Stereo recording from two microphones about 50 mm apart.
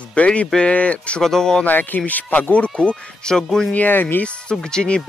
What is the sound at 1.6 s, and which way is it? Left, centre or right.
Speech, left.